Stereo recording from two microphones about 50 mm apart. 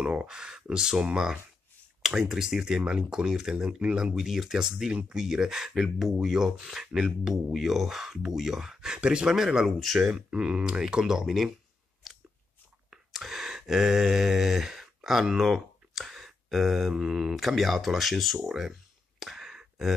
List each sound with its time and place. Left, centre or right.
0.0 s speech: right
12.0 s chewing: centre
12.9 s a sound: centre